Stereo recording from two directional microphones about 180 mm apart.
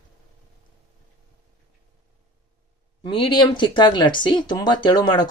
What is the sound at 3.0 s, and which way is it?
Speech, 25° left (ahead or behind).